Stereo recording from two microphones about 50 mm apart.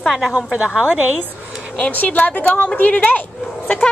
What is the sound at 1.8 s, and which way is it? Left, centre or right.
A woman's voice, left.